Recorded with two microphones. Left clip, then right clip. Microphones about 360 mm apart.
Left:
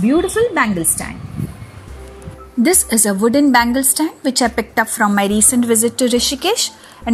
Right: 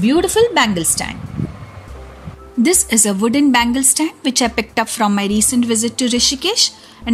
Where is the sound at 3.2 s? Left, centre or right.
Centre.